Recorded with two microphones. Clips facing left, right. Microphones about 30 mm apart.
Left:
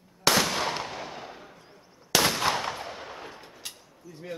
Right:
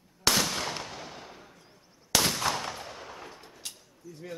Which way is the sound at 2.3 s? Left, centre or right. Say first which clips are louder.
Left 3 dB; left.